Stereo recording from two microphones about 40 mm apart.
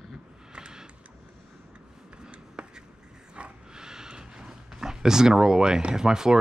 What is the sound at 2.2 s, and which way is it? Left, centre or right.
Writing, right.